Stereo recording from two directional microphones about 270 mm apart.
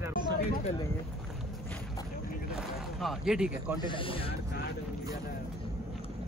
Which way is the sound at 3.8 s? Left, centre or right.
Centre.